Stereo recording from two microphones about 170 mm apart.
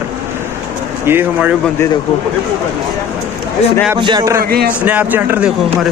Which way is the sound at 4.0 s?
25° right (ahead or behind).